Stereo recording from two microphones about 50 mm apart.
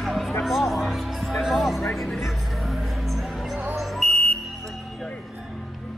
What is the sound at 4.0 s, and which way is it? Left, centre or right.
Music, centre.